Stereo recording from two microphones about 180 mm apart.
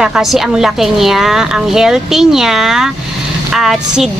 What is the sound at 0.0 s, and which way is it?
A woman's voice, 5° right (ahead or behind).